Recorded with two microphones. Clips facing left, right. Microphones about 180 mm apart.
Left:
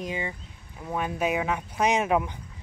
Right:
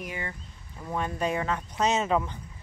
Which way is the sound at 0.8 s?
5° left (ahead or behind).